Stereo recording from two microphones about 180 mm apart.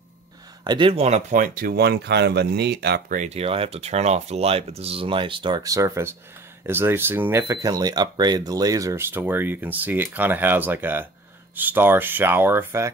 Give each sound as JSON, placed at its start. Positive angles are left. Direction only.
{"t": 0.7, "sound": "speech", "side_deg": -30}
{"t": 3.2, "sound": "speech", "side_deg": -35}